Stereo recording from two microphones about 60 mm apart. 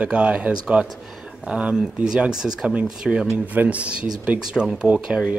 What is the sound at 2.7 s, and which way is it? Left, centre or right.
A man's voice, right.